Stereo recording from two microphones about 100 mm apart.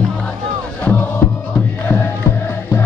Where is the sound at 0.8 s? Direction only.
20° left (ahead or behind).